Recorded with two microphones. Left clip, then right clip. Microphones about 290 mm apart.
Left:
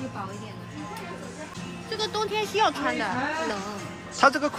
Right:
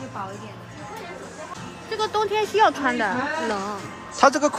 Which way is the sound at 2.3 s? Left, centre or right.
Right.